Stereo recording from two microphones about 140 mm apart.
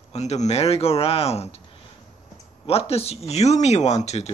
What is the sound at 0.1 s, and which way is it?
Speech, 55° left (ahead or behind).